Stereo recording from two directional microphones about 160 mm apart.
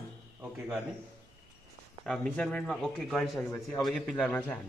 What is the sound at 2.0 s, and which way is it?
A man's voice, centre (ahead or behind).